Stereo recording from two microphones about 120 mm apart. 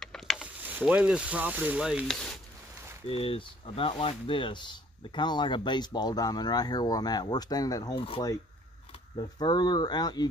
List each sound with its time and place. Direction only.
0.0 s mechanisms: 5° left (ahead or behind)
0.4 s mechanisms: 15° right (ahead or behind)
2.0 s speech: 5° left (ahead or behind)
3.1 s speech: 50° left (ahead or behind); by 8.0 s 30° left (ahead or behind)
9.4 s speech: 35° left (ahead or behind)